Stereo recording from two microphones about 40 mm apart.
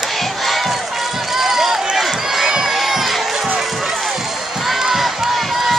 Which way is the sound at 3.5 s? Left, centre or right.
Centre.